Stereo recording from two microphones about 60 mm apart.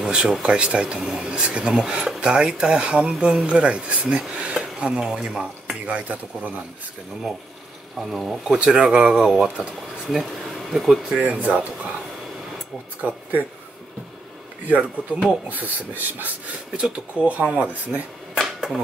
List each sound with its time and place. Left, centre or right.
0.0 s speech: centre
8.0 s speech: centre
8.7 s speech: centre
9.1 s speech: centre
10.7 s speech: centre
11.1 s speech: right
13.0 s speech: right
14.7 s speech: centre
15.5 s speech: right
18.4 s a sound: centre